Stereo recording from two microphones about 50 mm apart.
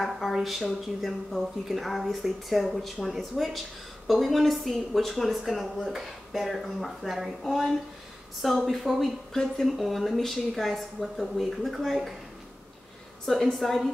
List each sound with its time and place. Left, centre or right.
0.2 s a woman's voice: centre
9.3 s a woman's voice: centre
13.2 s a woman's voice: centre